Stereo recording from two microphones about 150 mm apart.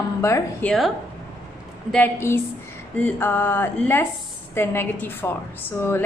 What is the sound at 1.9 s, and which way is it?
A woman's voice, 15° left (ahead or behind).